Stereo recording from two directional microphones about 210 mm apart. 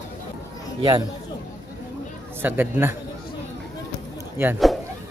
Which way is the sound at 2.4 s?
10° right (ahead or behind).